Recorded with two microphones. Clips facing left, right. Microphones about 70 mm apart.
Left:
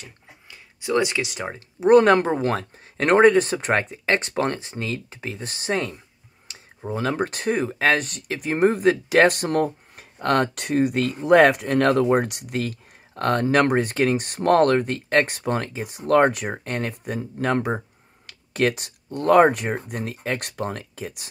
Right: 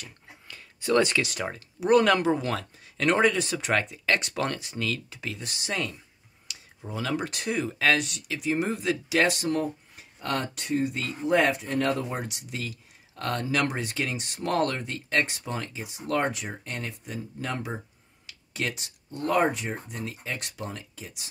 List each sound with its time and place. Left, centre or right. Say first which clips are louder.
0.0 s speech: left 1 dB; centre; by 21.3 s left